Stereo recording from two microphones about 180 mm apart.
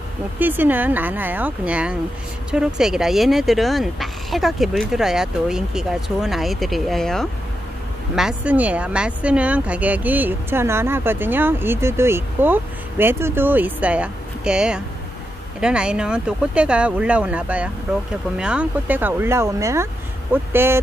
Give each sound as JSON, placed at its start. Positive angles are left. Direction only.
{"t": 0.4, "sound": "speech", "side_deg": -10}